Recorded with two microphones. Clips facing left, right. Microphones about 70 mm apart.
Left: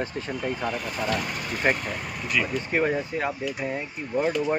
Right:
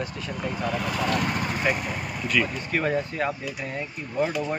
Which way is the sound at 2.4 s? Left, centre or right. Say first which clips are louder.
Left 2 dB; centre.